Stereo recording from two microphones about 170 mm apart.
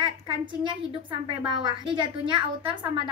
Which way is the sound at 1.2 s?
30° right (ahead or behind).